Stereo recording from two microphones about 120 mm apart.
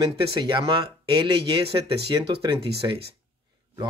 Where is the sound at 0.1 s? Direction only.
40° right (ahead or behind).